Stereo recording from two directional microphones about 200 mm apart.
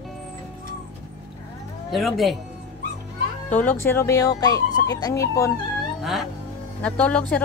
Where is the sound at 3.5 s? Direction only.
10° left (ahead or behind).